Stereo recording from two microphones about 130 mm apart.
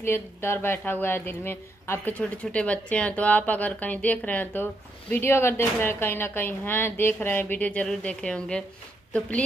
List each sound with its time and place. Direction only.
0.0 s speech: 15° left (ahead or behind)